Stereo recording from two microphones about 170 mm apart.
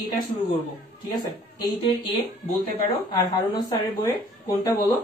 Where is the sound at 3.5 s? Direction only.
20° left (ahead or behind).